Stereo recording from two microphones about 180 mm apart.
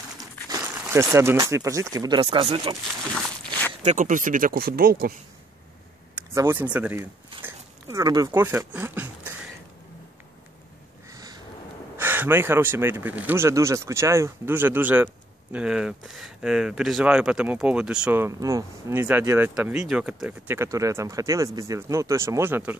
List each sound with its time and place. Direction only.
0.2 s speech: 20° right (ahead or behind)
3.8 s speech: 45° right (ahead or behind)
6.1 s speech: 10° right (ahead or behind)
7.4 s dog: 20° right (ahead or behind)
11.1 s crow: 20° right (ahead or behind)
12.0 s speech: 10° right (ahead or behind)